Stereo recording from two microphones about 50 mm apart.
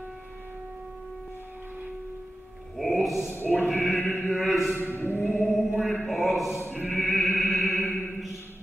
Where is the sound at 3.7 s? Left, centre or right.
Left.